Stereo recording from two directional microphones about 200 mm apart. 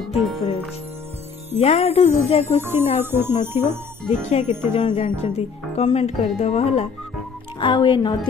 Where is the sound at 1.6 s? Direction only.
35° left (ahead or behind).